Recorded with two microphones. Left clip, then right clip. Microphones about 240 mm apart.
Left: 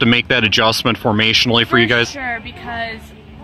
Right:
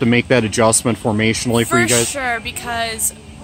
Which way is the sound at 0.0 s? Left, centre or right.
Centre.